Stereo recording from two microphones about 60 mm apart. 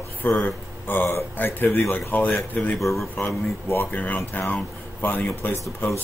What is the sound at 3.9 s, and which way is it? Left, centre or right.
Speech, left.